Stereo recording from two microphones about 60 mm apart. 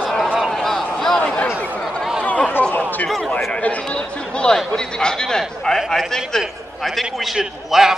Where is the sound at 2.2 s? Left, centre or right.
Left.